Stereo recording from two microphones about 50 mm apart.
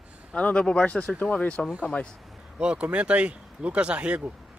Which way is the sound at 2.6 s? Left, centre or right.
Right.